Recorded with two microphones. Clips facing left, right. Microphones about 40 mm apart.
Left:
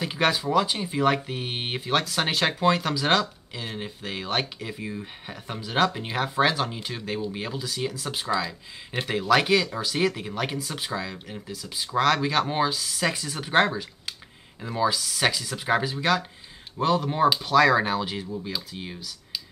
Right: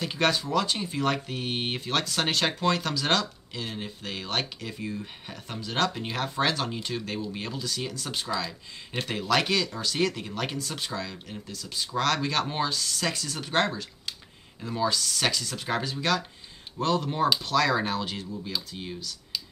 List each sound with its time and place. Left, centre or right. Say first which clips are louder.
0.0 s speech: left 2 dB; centre